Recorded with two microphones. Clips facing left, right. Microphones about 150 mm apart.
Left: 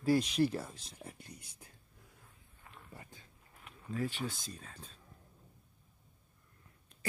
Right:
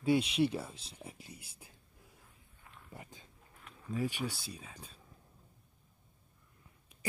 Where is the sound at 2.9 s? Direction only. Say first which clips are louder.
Right 4 dB; 20° right (ahead or behind).